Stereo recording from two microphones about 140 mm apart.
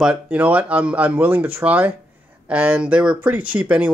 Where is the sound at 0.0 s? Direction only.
10° right (ahead or behind).